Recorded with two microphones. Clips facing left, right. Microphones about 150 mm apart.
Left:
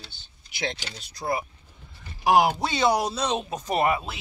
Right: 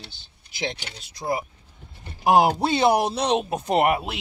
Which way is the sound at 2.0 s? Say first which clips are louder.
Right 2 dB; 30° right (ahead or behind).